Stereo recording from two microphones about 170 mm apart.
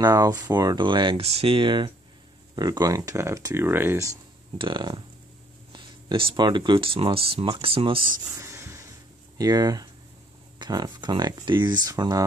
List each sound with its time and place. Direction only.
0.0 s speech: 20° right (ahead or behind)
4.6 s speech: 25° right (ahead or behind)
8.4 s a sound: 15° right (ahead or behind)
9.4 s speech: 20° right (ahead or behind)